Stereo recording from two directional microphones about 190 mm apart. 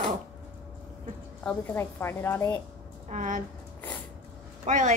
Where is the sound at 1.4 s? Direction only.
10° left (ahead or behind).